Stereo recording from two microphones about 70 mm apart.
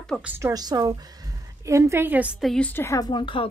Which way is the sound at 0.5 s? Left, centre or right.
Right.